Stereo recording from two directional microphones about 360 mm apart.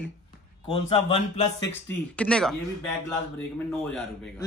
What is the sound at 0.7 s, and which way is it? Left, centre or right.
Speech, centre.